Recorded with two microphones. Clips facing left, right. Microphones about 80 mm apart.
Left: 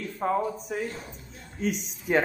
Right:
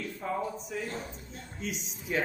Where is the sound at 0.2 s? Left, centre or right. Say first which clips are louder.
Left 8 dB; left.